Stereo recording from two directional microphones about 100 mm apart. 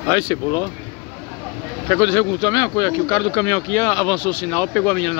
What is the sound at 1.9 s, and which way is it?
Speech, 35° left (ahead or behind).